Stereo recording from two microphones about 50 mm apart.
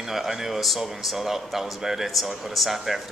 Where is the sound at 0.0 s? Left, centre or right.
Centre.